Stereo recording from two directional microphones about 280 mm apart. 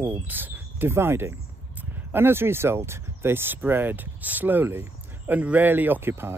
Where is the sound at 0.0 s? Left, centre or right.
Centre.